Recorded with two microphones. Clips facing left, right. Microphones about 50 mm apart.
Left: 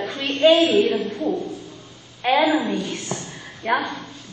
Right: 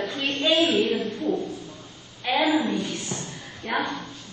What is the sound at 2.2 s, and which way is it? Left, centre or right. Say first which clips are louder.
A woman's voice: left 4 dB; left.